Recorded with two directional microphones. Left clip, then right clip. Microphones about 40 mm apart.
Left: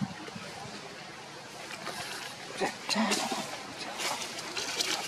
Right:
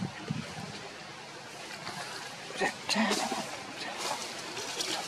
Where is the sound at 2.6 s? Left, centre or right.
Centre.